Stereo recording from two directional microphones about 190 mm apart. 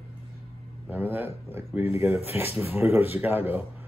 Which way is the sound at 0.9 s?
10° right (ahead or behind).